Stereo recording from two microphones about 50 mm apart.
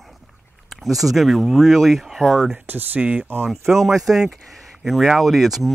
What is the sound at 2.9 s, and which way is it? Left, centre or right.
Speech, right.